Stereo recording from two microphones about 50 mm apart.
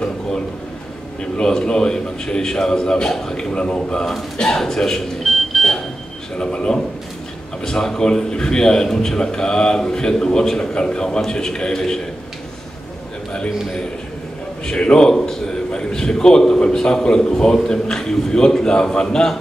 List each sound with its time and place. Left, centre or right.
1.4 s a man's voice: centre
6.3 s a man's voice: centre
14.7 s a man's voice: centre